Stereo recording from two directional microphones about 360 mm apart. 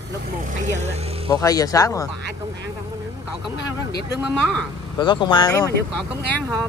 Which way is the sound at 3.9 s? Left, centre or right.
Right.